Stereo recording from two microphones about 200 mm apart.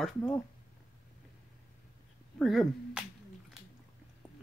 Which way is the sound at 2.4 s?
Centre (ahead or behind).